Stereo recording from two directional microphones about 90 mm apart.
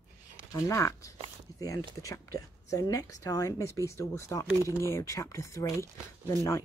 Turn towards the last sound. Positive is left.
turn(degrees=30)  # may be behind; listen again after turning